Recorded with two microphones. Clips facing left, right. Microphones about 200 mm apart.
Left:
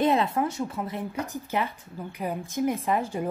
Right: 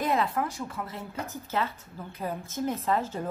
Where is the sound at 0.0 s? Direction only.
25° left (ahead or behind).